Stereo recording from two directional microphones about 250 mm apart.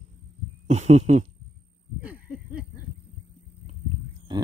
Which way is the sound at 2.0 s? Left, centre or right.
Centre.